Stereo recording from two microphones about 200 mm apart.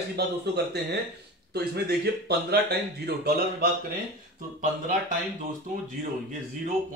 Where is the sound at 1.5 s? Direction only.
55° right (ahead or behind).